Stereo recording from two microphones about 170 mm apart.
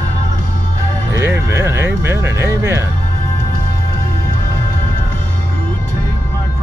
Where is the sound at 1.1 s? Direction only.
15° right (ahead or behind).